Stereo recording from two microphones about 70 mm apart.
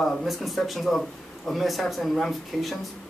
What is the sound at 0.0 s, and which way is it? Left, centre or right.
Speech, centre.